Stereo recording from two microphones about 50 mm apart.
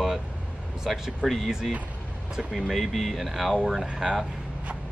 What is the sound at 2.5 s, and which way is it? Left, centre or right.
Speech, centre.